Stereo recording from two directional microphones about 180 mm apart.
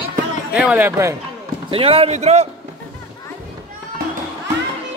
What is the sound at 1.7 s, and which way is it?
Speech, 30° right (ahead or behind).